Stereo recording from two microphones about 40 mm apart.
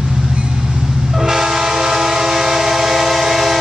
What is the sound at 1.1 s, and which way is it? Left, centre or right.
Train, centre.